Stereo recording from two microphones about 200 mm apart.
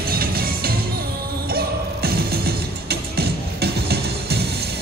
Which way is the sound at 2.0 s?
50° right (ahead or behind).